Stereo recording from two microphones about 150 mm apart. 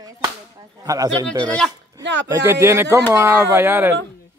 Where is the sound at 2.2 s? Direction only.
20° right (ahead or behind).